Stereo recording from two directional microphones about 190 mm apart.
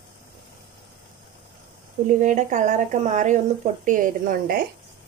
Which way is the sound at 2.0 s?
40° right (ahead or behind).